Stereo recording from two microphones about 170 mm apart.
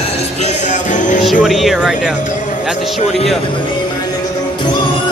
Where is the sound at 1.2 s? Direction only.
Centre (ahead or behind).